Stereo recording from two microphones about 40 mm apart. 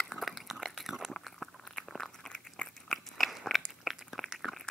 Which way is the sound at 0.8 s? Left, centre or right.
Centre.